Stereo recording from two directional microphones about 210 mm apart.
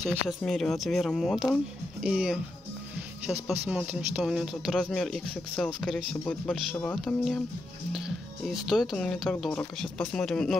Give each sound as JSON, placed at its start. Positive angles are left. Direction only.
{"t": 0.1, "sound": "speech", "side_deg": 0}
{"t": 3.4, "sound": "speech", "side_deg": -5}